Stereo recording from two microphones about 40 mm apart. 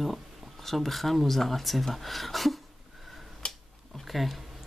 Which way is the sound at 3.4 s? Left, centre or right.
Left.